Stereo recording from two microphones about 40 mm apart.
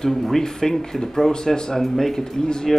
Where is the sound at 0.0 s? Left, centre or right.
Centre.